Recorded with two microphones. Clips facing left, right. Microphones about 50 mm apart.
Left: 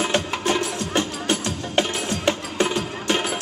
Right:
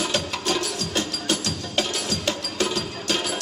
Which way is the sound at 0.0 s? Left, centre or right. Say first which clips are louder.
Left 3 dB; left.